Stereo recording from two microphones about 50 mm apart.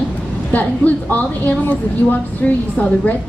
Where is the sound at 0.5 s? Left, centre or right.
Left.